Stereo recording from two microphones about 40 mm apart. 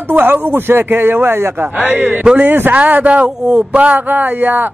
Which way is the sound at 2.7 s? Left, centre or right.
Right.